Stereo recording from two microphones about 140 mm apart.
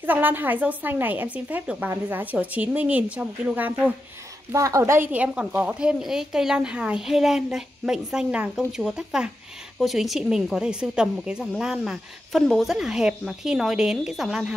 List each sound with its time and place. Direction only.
0.0 s a woman's voice: 15° right (ahead or behind)
4.5 s a woman's voice: 25° right (ahead or behind)
5.1 s speech: 10° right (ahead or behind)